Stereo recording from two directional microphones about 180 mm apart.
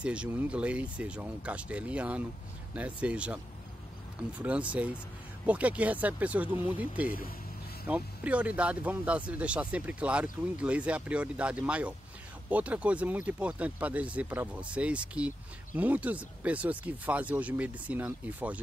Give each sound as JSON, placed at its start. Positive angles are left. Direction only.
{"t": 0.0, "sound": "speech", "side_deg": -5}